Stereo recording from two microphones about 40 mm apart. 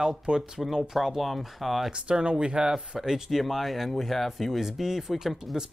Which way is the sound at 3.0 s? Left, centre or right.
Centre.